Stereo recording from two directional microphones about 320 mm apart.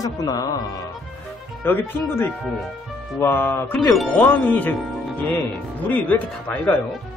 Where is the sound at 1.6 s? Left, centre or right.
Centre.